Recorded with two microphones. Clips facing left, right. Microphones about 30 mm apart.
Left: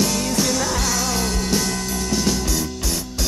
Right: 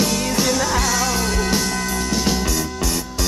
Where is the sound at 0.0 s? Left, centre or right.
Centre.